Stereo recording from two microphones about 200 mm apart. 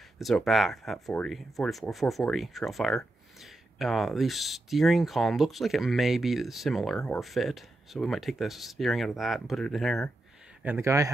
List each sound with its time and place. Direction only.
0.2 s speech: centre (ahead or behind)
10.6 s speech: 10° right (ahead or behind)